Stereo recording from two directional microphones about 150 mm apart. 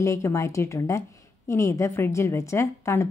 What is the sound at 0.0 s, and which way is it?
A woman's voice, 20° left (ahead or behind).